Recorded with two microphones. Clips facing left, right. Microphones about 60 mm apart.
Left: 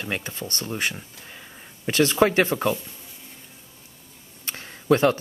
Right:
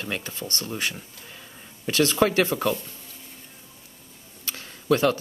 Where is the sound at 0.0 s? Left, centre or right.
Left.